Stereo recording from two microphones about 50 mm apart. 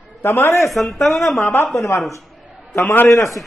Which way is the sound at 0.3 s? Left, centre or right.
Left.